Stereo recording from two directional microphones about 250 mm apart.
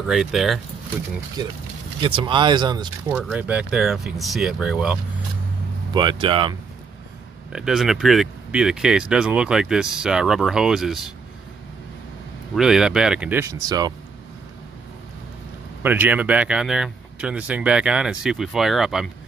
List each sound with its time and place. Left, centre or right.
0.0 s speech: centre
2.0 s speech: right
3.2 s speech: centre
5.9 s speech: centre
7.5 s speech: centre
12.5 s speech: centre
15.8 s speech: centre